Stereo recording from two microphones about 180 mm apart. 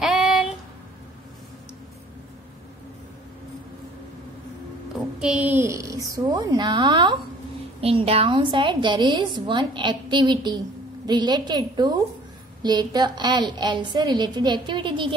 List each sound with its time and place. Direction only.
0.0 s female singing: centre (ahead or behind)
5.2 s a woman's voice: 5° right (ahead or behind); by 15.1 s 30° right (ahead or behind)